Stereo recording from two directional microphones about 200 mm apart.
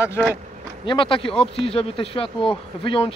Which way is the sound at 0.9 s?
25° left (ahead or behind).